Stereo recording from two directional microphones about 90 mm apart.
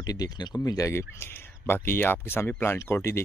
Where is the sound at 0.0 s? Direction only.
45° left (ahead or behind).